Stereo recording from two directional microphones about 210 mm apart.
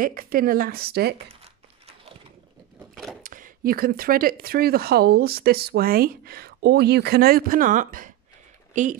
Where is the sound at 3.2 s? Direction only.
40° right (ahead or behind).